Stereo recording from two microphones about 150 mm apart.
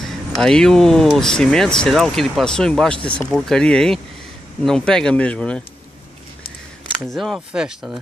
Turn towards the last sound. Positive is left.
turn(degrees=-5)  # may be behind; listen again after turning